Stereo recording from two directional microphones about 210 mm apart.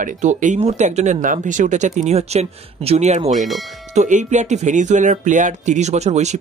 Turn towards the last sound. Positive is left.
turn(degrees=-30)  # may be behind; listen again after turning